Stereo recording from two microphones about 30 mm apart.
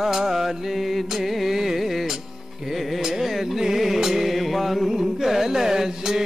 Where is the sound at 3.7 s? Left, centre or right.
Centre.